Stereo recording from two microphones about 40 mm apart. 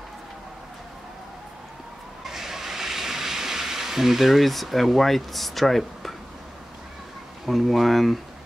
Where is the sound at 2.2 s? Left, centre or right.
Centre.